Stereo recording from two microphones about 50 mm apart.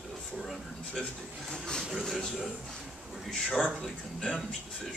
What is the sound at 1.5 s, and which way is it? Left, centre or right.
Speech, centre.